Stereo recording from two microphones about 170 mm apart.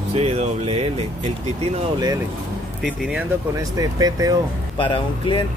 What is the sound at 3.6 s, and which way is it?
Speech, 20° right (ahead or behind).